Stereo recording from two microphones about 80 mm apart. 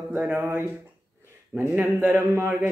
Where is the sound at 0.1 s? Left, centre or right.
Right.